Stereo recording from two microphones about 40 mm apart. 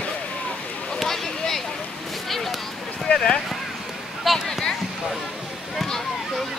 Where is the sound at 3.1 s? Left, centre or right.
Left.